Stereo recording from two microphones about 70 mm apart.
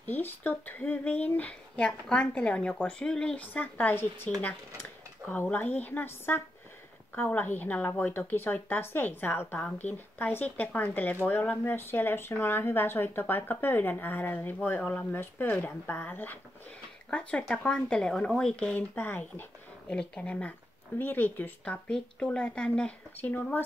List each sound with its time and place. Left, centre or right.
0.0 s speech: left
5.3 s speech: left
17.1 s speech: centre
18.8 s speech: left
19.9 s speech: centre
23.1 s speech: left